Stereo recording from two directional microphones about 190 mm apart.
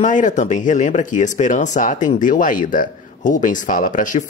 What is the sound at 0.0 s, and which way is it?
Speech, 40° left (ahead or behind).